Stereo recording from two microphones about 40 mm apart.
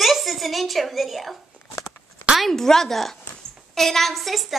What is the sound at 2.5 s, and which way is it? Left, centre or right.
Speech, centre.